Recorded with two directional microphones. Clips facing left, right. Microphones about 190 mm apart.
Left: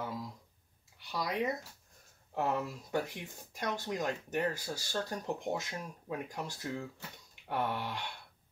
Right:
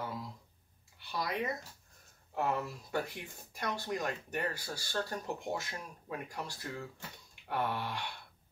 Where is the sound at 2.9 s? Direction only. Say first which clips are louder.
Left 1 dB; 15° left (ahead or behind).